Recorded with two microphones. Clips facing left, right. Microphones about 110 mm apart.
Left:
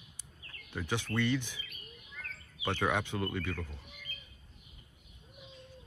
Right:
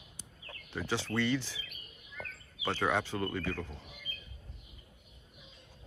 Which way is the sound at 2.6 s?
15° left (ahead or behind).